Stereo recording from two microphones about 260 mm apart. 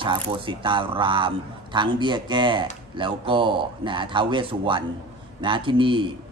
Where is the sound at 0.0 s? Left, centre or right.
Centre.